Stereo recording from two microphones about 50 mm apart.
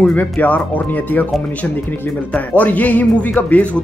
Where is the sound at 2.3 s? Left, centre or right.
Left.